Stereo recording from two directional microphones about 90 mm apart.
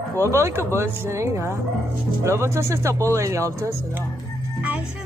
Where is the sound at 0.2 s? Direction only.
30° right (ahead or behind).